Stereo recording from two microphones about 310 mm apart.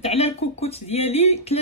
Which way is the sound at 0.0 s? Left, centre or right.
Centre.